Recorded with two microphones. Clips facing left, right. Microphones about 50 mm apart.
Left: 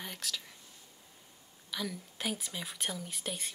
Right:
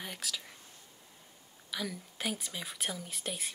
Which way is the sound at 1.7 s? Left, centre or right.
Centre.